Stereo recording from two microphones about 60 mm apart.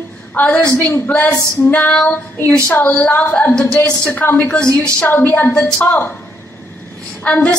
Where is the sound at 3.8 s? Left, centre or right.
Left.